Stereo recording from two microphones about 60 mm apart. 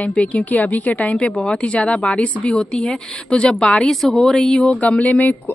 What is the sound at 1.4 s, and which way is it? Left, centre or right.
A woman's voice, centre.